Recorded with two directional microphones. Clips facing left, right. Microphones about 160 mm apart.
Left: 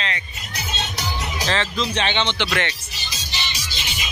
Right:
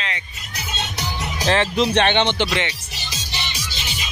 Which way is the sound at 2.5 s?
15° right (ahead or behind).